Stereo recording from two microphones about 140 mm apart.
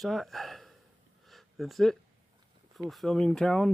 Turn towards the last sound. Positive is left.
turn(degrees=5)  # may be behind; listen again after turning